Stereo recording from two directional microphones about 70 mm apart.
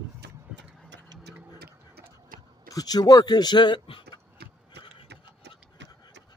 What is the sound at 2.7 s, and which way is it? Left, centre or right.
Speech, left.